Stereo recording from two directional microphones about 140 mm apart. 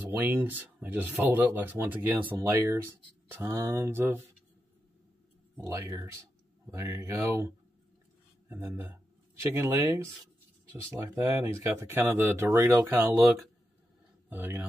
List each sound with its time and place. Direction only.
0.1 s speech: 15° right (ahead or behind)
5.7 s speech: 20° right (ahead or behind)